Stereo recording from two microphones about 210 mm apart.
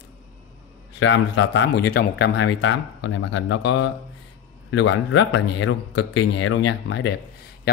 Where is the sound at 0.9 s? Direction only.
60° left (ahead or behind).